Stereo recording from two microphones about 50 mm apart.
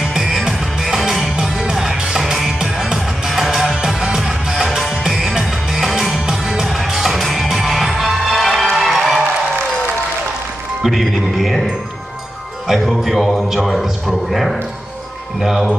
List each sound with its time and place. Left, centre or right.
0.0 s music: centre
10.8 s a man's voice: centre